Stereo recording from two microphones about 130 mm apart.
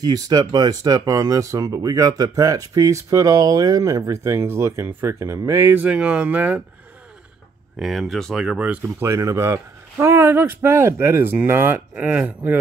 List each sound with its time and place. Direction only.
0.0 s speech: 30° right (ahead or behind); by 6.6 s 10° right (ahead or behind)
7.8 s speech: centre (ahead or behind)
9.0 s speech: 20° right (ahead or behind)